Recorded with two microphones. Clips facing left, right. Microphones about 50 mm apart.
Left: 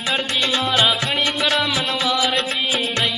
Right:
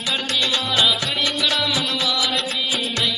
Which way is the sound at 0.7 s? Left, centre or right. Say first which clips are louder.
Left 2 dB; left.